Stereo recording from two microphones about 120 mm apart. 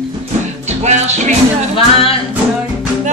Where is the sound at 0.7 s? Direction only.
75° right (ahead or behind).